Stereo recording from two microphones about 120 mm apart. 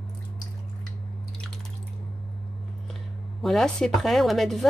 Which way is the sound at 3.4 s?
5° left (ahead or behind).